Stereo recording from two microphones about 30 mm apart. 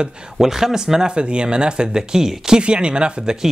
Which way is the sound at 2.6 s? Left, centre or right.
Right.